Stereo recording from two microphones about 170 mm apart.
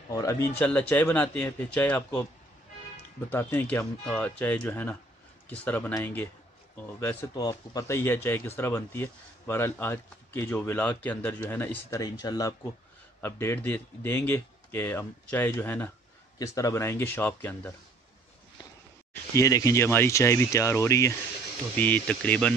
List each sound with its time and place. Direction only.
0.1 s speech: 20° left (ahead or behind)
3.3 s speech: 10° left (ahead or behind)
19.3 s speech: 20° left (ahead or behind)